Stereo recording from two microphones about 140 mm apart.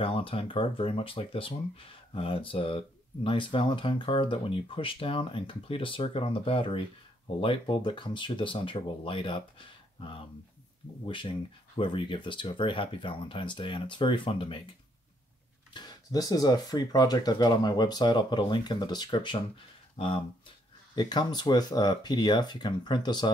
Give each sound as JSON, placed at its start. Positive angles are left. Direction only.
{"t": 0.0, "sound": "speech", "side_deg": 40}
{"t": 11.1, "sound": "speech", "side_deg": 35}
{"t": 15.7, "sound": "speech", "side_deg": 30}